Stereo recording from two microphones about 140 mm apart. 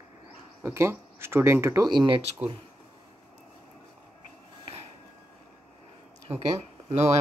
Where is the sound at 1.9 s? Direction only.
35° right (ahead or behind).